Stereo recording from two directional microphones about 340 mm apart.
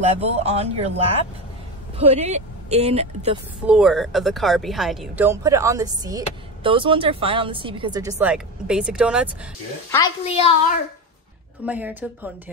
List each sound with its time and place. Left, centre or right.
0.2 s speech: centre
3.6 s speech: centre
9.8 s a woman's voice: centre
11.6 s speech: centre